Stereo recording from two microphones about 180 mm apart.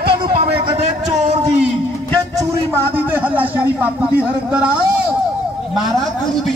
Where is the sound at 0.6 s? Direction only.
35° right (ahead or behind).